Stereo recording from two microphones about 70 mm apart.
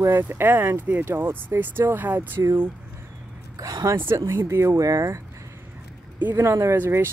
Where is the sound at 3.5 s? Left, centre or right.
Right.